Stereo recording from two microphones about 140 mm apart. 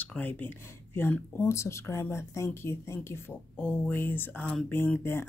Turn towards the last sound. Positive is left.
turn(degrees=15)  # may be behind; listen again after turning